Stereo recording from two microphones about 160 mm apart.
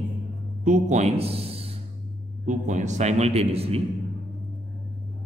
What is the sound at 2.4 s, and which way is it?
A man's voice, 50° right (ahead or behind).